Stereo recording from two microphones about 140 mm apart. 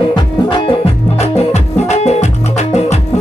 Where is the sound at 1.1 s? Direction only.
50° left (ahead or behind).